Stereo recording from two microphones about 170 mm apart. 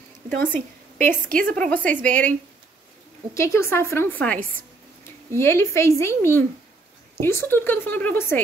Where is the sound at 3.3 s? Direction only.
15° left (ahead or behind).